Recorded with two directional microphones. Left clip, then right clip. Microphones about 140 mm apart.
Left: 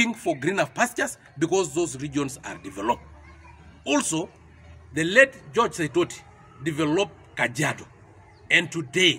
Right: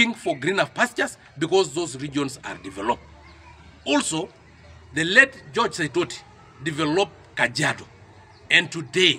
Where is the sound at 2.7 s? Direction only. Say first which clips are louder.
Even; 5° left (ahead or behind).